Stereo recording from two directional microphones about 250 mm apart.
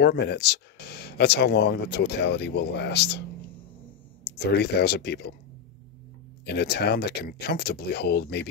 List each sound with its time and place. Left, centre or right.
0.0 s speech: left
6.4 s speech: left